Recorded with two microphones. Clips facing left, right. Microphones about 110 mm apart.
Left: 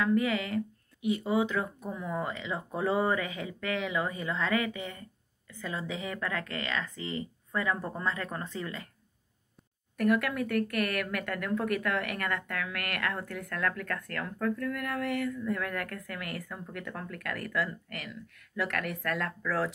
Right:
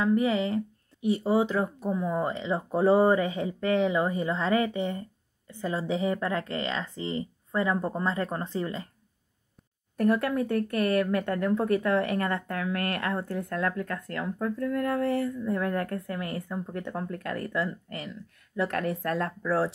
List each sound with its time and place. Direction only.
0.0 s speech: 30° right (ahead or behind)
9.9 s speech: 30° right (ahead or behind)